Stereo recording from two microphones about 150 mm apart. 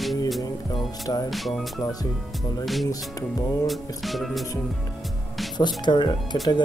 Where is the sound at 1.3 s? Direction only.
Centre (ahead or behind).